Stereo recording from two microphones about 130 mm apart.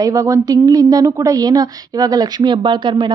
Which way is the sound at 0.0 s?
25° right (ahead or behind).